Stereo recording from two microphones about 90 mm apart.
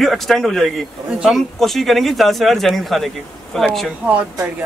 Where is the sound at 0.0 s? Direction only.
Centre (ahead or behind).